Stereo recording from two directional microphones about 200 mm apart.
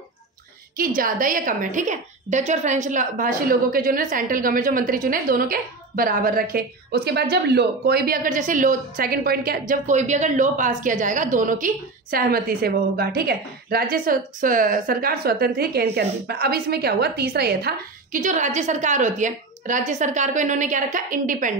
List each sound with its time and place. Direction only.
0.7 s a woman's voice: 45° right (ahead or behind)